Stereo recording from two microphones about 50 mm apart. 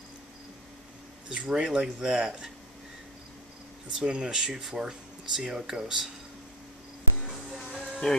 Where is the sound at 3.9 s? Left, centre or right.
Centre.